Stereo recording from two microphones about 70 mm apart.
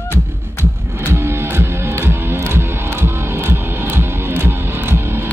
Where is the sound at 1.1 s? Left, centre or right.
Right.